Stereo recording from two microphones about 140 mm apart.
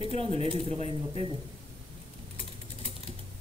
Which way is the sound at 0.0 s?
45° right (ahead or behind).